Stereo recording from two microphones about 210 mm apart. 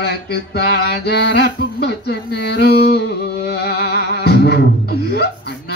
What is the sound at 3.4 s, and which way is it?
Music, 50° left (ahead or behind).